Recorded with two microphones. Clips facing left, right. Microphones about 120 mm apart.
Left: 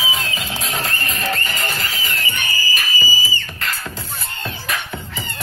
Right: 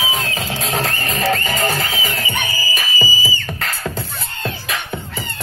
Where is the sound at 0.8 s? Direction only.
90° right.